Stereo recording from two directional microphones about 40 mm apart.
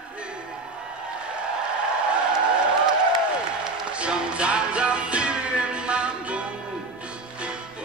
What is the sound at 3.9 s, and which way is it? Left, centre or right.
Music, right.